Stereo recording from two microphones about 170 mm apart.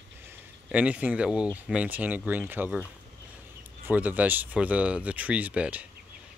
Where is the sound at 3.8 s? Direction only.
10° right (ahead or behind).